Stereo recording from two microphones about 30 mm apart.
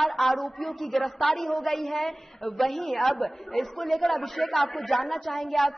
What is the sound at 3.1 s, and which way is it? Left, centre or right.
Speech, centre.